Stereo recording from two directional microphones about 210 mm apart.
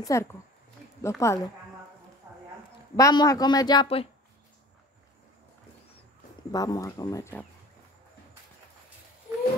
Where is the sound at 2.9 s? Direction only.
15° left (ahead or behind).